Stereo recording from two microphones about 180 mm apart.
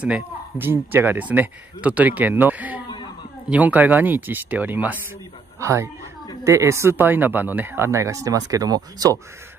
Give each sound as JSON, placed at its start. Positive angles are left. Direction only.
{"t": 0.0, "sound": "speech", "side_deg": -10}